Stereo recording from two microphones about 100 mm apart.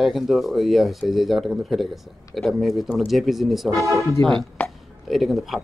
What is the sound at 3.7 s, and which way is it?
Speech, 30° right (ahead or behind).